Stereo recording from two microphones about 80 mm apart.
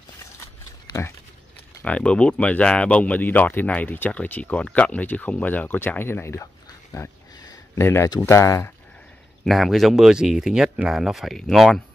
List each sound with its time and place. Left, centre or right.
1.9 s speech: centre; by 8.7 s left
9.4 s speech: centre